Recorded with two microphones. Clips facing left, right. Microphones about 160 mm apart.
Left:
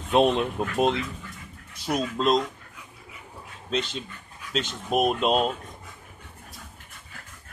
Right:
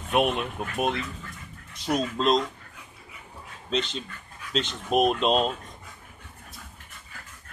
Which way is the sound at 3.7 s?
5° left (ahead or behind).